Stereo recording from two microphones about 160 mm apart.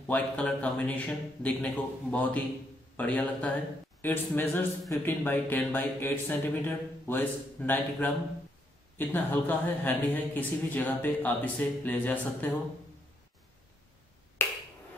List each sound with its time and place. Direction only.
0.0 s a man's voice: 5° left (ahead or behind)
14.4 s finger snapping: 15° left (ahead or behind)